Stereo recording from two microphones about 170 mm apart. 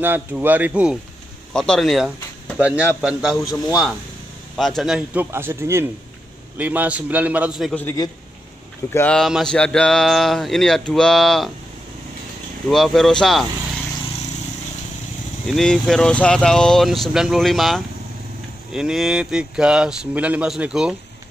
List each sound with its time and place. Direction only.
0.0 s speech: 10° right (ahead or behind)
1.5 s speech: 5° left (ahead or behind)
3.3 s a man's voice: 20° left (ahead or behind)
4.6 s speech: centre (ahead or behind)
7.8 s a man's voice: 20° left (ahead or behind)
8.9 s speech: 5° left (ahead or behind)
12.6 s speech: centre (ahead or behind)
15.4 s speech: centre (ahead or behind)